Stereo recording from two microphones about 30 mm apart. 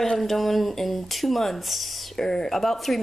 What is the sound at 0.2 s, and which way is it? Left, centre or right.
Speech, centre.